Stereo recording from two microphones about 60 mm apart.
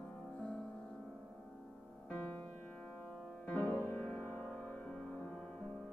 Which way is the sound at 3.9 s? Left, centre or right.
Left.